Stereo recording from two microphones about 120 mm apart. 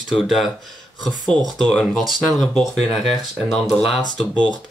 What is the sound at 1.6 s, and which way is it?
Speech, 5° left (ahead or behind).